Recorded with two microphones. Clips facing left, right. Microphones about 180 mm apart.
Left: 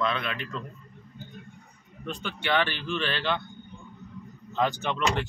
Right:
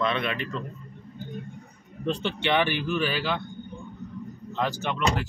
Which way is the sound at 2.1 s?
30° right (ahead or behind).